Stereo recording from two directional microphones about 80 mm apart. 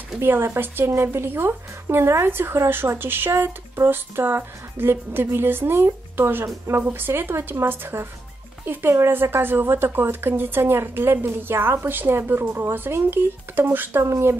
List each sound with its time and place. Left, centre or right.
0.2 s speech: right